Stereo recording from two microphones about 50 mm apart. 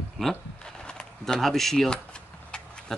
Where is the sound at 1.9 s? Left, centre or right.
Centre.